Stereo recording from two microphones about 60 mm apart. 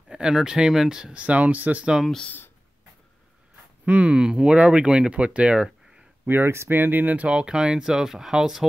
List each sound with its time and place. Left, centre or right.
0.1 s speech: centre
2.2 s speech: left
3.8 s speech: centre
6.2 s speech: right
7.2 s speech: centre